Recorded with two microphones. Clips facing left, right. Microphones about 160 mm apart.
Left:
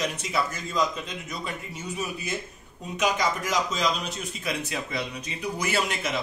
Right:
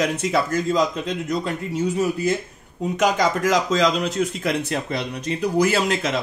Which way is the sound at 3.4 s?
90° right.